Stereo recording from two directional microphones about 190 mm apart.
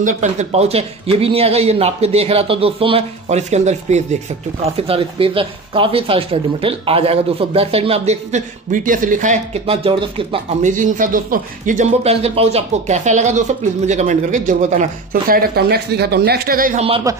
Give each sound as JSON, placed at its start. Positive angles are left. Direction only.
{"t": 0.0, "sound": "speech", "side_deg": -40}
{"t": 10.6, "sound": "speech", "side_deg": -45}